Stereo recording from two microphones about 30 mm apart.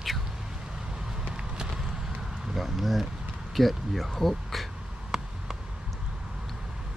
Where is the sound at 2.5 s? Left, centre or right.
Centre.